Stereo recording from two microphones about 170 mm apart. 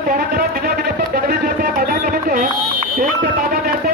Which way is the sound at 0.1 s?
60° right (ahead or behind).